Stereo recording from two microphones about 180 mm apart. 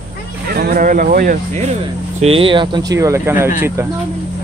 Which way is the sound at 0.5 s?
55° right (ahead or behind).